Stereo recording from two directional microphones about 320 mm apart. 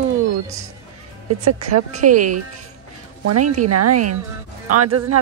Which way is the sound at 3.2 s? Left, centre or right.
Right.